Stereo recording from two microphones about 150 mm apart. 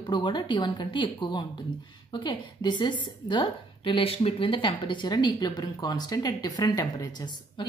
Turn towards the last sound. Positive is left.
turn(degrees=25)  # may be behind; listen again after turning